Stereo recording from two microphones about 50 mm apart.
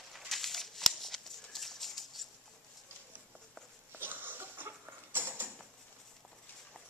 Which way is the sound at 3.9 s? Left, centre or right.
Right.